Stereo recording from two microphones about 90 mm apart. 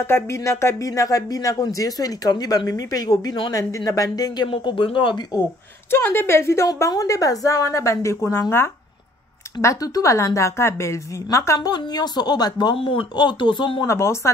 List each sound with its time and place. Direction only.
0.0 s speech: 30° left (ahead or behind); by 4.5 s 45° left (ahead or behind)
4.5 s speech: 80° left
5.9 s a woman's voice: 25° left (ahead or behind)
6.7 s a woman's voice: 40° left (ahead or behind); by 8.6 s 25° left (ahead or behind)
9.6 s speech: 40° left (ahead or behind)
12.7 s speech: 80° left; by 13.8 s 60° left (ahead or behind)
13.8 s speech: 30° left (ahead or behind)